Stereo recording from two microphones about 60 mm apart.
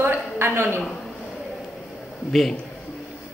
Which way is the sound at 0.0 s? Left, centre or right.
Right.